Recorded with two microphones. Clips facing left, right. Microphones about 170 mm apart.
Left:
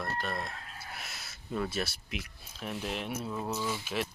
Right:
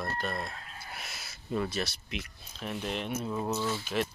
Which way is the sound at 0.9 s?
Centre (ahead or behind).